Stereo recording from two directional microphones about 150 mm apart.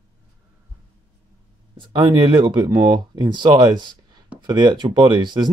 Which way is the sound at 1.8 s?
30° right (ahead or behind).